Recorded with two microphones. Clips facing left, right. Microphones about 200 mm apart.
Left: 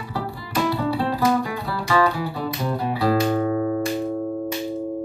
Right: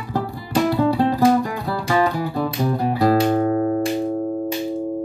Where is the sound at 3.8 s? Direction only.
35° right (ahead or behind).